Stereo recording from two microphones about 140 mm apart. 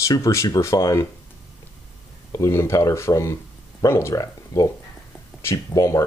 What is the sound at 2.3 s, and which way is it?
Speech, 20° left (ahead or behind).